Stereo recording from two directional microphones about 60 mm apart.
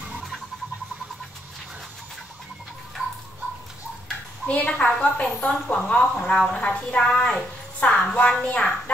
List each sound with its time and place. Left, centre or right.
4.5 s a woman's voice: left